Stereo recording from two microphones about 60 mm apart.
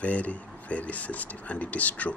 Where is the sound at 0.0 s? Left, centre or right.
Left.